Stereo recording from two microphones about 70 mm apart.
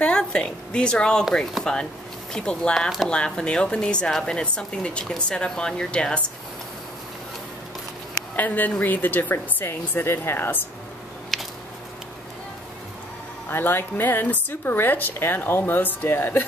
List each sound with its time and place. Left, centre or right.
0.0 s a woman's voice: centre
8.4 s speech: left
13.5 s speech: left